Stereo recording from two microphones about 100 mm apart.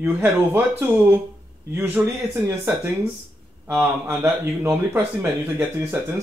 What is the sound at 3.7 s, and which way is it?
Speech, 25° right (ahead or behind).